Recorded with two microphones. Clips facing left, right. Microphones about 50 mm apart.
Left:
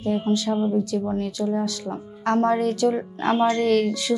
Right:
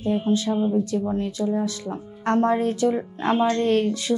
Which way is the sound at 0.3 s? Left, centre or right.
Centre.